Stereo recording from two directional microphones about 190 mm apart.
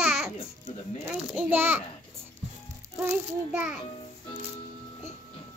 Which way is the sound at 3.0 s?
10° right (ahead or behind).